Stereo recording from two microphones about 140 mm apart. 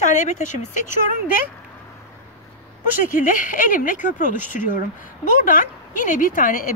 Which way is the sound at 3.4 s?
75° left (ahead or behind).